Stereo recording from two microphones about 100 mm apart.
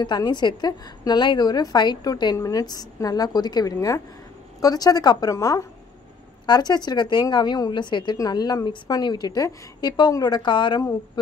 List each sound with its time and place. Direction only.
0.0 s a woman's voice: 45° left (ahead or behind)
2.3 s a woman's voice: 35° left (ahead or behind)
5.3 s a woman's voice: 30° left (ahead or behind)
6.4 s a woman's voice: 45° left (ahead or behind)